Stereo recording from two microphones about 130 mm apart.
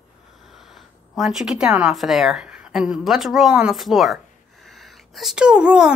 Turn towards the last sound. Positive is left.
turn(degrees=-5)  # may be behind; listen again after turning